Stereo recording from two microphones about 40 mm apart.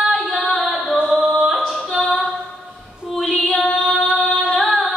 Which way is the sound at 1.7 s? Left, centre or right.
Centre.